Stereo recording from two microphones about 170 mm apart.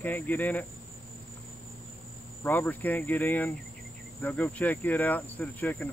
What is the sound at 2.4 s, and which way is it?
Cricket, 10° left (ahead or behind).